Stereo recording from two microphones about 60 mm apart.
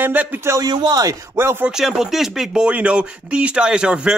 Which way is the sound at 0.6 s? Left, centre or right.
Right.